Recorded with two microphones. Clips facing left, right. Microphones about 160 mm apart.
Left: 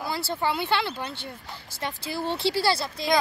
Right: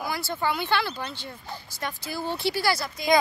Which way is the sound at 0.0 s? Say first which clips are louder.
Left 1 dB; 25° left (ahead or behind).